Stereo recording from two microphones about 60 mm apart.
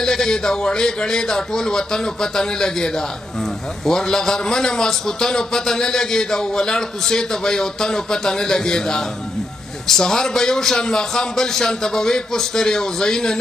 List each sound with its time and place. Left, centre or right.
0.0 s a man's voice: centre